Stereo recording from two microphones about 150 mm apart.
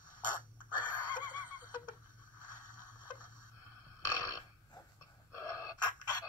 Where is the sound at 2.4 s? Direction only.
60° left (ahead or behind).